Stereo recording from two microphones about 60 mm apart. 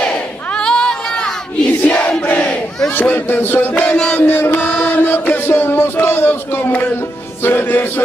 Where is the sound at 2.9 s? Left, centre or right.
Left.